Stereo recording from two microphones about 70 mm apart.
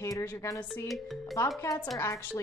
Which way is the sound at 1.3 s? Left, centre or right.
Left.